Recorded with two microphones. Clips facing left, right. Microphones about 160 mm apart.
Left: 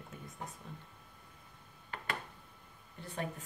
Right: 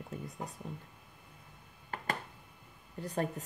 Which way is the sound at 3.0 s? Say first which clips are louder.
Right 6 dB; 40° right (ahead or behind).